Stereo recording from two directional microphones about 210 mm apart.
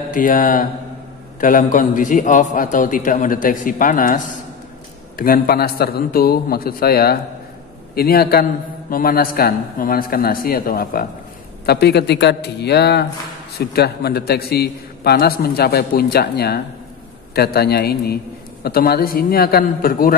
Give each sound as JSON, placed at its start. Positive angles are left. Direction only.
{"t": 0.1, "sound": "a man's voice", "side_deg": 40}